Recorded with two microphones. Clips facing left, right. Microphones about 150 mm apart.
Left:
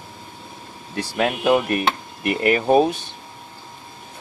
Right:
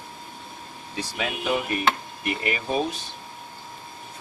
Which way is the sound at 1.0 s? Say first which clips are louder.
Left 8 dB; 60° left (ahead or behind).